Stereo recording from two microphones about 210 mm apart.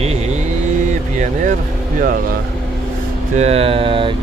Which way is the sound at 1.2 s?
35° right (ahead or behind).